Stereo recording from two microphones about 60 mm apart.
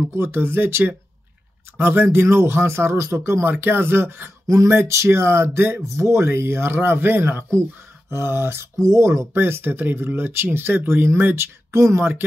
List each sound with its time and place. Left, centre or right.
0.1 s speech: right
3.5 s speech: right
4.5 s speech: right
9.3 s speech: right